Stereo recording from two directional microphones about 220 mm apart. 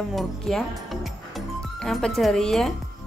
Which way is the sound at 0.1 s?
Centre (ahead or behind).